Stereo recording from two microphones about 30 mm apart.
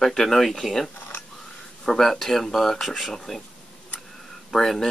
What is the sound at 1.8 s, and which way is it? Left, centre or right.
Speech, centre.